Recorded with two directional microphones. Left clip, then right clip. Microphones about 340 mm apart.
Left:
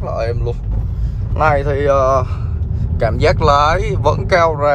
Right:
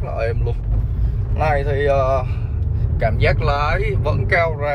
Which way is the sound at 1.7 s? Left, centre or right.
Left.